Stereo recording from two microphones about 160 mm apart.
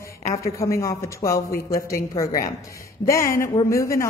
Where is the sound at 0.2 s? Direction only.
20° left (ahead or behind).